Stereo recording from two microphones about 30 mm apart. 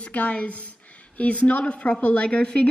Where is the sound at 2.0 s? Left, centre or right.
Left.